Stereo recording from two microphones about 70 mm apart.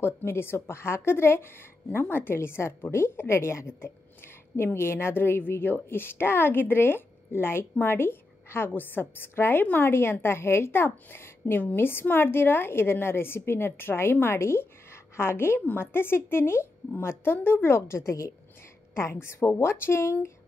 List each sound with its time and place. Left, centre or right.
0.0 s speech: left
19.2 s speech: left